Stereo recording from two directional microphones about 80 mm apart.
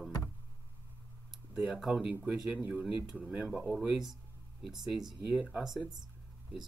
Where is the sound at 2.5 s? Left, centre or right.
Right.